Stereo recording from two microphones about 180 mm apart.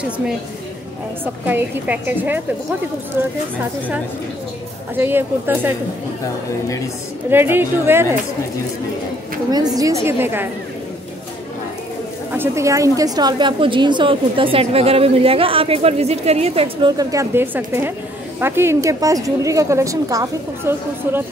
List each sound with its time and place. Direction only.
1.2 s a woman's voice: 10° right (ahead or behind)
4.9 s a woman's voice: 10° right (ahead or behind)
7.2 s a woman's voice: 10° right (ahead or behind)
9.5 s a woman's voice: 20° right (ahead or behind)
12.3 s a woman's voice: 15° right (ahead or behind)